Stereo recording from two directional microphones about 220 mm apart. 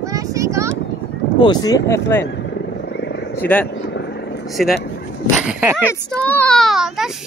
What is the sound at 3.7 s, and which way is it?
Vehicle, 50° left (ahead or behind).